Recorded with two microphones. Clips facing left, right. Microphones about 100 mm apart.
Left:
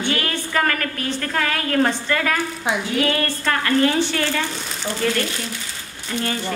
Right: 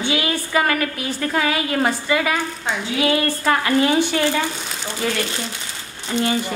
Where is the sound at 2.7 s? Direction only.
5° left (ahead or behind).